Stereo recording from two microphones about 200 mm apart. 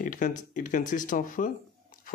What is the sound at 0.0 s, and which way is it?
Speech, 40° left (ahead or behind).